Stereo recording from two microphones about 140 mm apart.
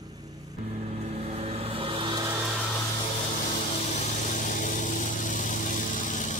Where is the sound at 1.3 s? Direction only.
45° right (ahead or behind).